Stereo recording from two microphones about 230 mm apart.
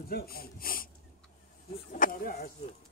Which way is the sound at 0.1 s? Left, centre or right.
Left.